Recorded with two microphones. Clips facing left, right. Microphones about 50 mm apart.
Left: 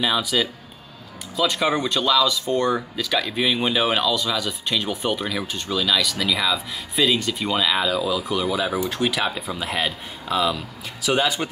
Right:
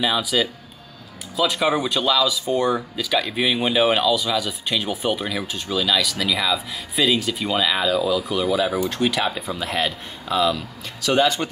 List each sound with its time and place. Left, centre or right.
0.0 s speech: centre